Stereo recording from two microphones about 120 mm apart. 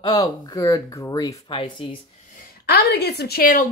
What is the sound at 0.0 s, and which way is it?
Speech, 35° left (ahead or behind).